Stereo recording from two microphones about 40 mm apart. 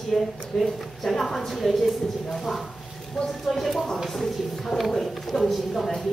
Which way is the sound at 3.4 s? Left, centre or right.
Centre.